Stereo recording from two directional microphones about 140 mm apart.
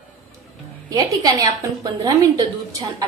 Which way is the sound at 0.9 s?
25° right (ahead or behind).